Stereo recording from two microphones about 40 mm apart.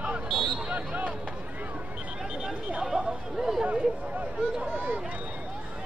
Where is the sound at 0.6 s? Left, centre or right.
Right.